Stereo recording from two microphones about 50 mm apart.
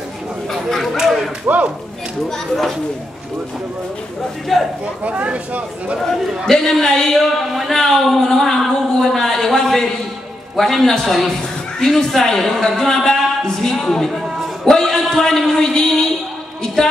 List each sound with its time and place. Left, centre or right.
0.5 s chatter: centre
0.9 s a sound: centre
2.2 s a man's voice: centre
4.5 s speech: centre
5.0 s speech: right
5.9 s a man's voice: centre
13.6 s a sound: centre
14.1 s a sound: centre
14.7 s a woman's voice: centre